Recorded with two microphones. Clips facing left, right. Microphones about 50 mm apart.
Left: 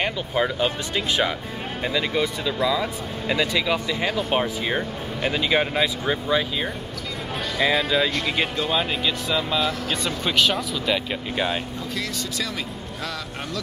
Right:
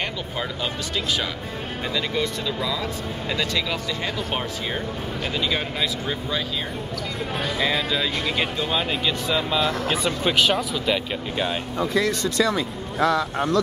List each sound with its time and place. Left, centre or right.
0.0 s speech: centre
2.0 s speech: centre
7.5 s speech: centre